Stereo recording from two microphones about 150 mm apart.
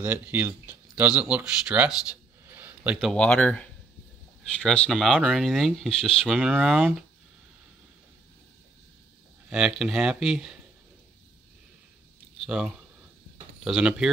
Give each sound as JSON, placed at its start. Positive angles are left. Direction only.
{"t": 0.0, "sound": "speech", "side_deg": -15}
{"t": 3.0, "sound": "speech", "side_deg": 5}
{"t": 9.5, "sound": "speech", "side_deg": -5}
{"t": 12.4, "sound": "speech", "side_deg": -5}